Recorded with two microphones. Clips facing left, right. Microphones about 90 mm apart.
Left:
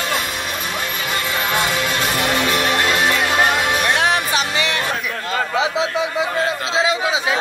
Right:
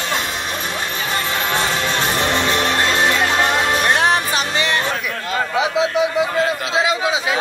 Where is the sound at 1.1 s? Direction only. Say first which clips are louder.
Even; 30° right (ahead or behind).